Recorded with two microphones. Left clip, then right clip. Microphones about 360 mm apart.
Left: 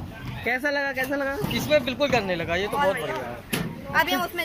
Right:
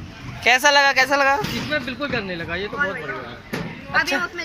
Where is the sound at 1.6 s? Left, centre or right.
Centre.